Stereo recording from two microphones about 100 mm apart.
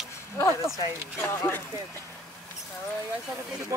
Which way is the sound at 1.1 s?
25° left (ahead or behind).